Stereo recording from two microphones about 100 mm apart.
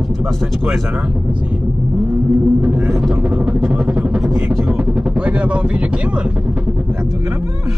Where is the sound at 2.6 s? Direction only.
10° right (ahead or behind).